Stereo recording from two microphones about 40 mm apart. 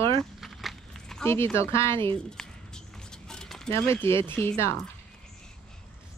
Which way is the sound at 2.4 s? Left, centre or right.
Centre.